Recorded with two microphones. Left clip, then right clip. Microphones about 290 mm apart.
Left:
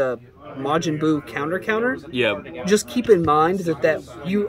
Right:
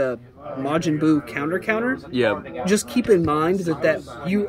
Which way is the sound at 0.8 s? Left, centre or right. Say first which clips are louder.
Right 1 dB; centre.